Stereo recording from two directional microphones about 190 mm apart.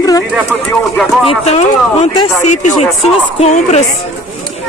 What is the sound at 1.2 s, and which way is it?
Speech, 35° left (ahead or behind).